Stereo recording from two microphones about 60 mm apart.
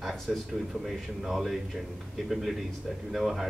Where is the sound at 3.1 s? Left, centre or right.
Centre.